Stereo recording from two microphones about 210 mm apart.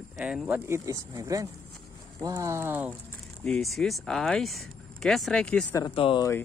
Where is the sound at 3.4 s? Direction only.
Centre (ahead or behind).